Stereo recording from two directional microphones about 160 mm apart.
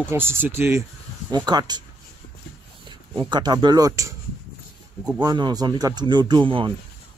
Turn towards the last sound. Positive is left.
turn(degrees=-30)  # may be behind; listen again after turning